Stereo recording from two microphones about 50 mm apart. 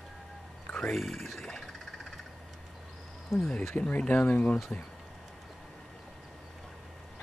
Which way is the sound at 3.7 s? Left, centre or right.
Left.